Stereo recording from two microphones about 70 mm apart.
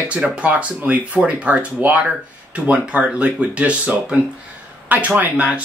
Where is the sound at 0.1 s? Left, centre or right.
Centre.